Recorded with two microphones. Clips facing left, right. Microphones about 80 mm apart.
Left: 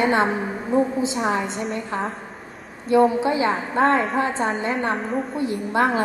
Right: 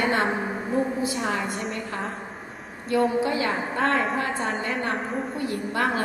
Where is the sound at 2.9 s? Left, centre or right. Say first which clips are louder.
Left 5 dB; left.